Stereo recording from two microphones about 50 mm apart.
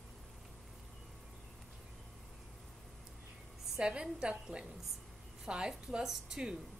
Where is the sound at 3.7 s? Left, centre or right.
Centre.